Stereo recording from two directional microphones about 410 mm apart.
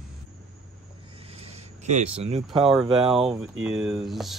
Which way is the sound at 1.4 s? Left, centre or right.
Centre.